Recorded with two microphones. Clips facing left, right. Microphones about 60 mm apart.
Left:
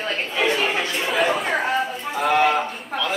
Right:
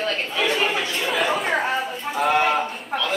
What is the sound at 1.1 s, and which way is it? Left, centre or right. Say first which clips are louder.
Speech: left 1 dB; centre.